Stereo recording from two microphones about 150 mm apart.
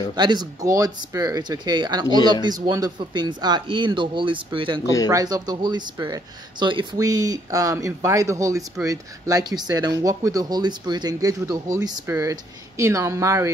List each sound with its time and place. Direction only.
0.1 s speech: 30° right (ahead or behind)